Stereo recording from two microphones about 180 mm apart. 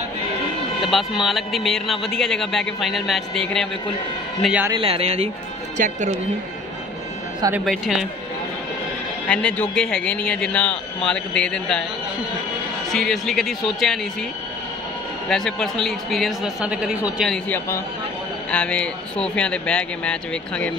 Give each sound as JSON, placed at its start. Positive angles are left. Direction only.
{"t": 0.8, "sound": "a man's voice", "side_deg": 0}
{"t": 4.7, "sound": "speech", "side_deg": -30}
{"t": 7.6, "sound": "a man's voice", "side_deg": 0}
{"t": 9.3, "sound": "a man's voice", "side_deg": 5}
{"t": 12.9, "sound": "a man's voice", "side_deg": 0}
{"t": 15.2, "sound": "a man's voice", "side_deg": 0}
{"t": 17.3, "sound": "a man's voice", "side_deg": 10}